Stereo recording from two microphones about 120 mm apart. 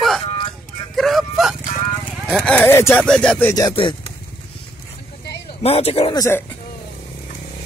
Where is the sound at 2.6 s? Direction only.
20° left (ahead or behind).